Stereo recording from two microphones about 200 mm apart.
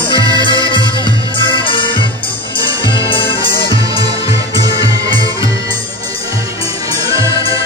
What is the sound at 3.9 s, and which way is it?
Music, 20° right (ahead or behind).